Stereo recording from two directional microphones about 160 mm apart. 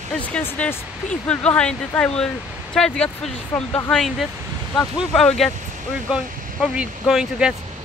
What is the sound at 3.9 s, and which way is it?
Speech, centre (ahead or behind).